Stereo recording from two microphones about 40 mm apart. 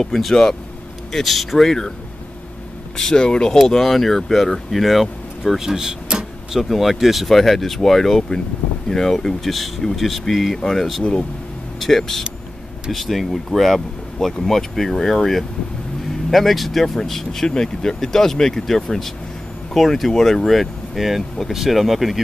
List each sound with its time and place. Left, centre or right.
0.0 s speech: centre
3.0 s speech: centre
3.6 s speech: centre
5.6 s vehicle: centre
6.6 s speech: centre